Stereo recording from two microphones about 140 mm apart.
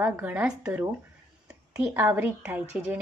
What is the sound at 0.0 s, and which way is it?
Speech, 15° right (ahead or behind).